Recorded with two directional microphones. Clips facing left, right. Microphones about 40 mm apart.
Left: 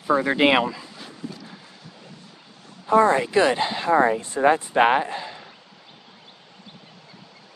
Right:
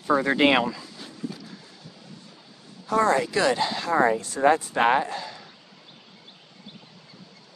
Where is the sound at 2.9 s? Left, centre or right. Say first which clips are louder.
Left 4 dB; left.